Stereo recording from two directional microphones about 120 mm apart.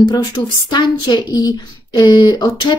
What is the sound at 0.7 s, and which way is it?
A woman's voice, 35° left (ahead or behind).